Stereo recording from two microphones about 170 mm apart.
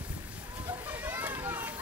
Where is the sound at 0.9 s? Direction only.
10° right (ahead or behind).